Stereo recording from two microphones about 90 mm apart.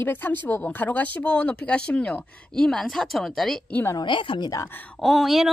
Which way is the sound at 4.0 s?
65° left (ahead or behind).